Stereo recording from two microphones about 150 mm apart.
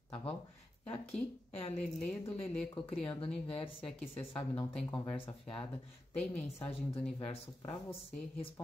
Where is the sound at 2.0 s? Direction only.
5° left (ahead or behind).